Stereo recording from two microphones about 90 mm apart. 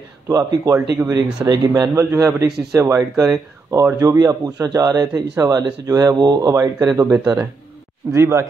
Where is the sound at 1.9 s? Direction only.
35° right (ahead or behind).